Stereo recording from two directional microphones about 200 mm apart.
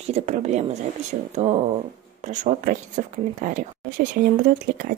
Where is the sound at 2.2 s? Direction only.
35° right (ahead or behind).